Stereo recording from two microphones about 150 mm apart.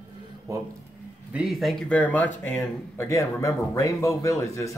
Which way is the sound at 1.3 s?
Centre (ahead or behind).